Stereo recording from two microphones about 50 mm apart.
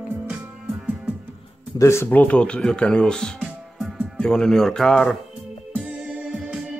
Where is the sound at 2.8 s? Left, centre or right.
Centre.